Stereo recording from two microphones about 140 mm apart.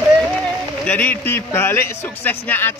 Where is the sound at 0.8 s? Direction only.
15° left (ahead or behind).